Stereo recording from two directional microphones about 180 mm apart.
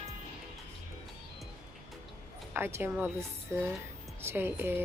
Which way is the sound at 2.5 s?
10° right (ahead or behind).